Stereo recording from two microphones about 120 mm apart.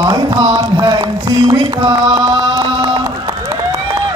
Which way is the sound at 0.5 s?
35° right (ahead or behind).